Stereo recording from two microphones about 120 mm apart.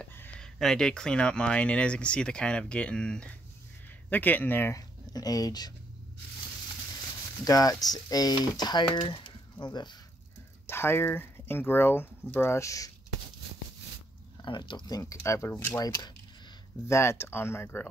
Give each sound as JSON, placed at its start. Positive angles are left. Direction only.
{"t": 0.0, "sound": "speech", "side_deg": 10}
{"t": 7.4, "sound": "speech", "side_deg": 30}
{"t": 10.7, "sound": "speech", "side_deg": 20}
{"t": 14.4, "sound": "speech", "side_deg": 40}
{"t": 15.8, "sound": "speech", "side_deg": 30}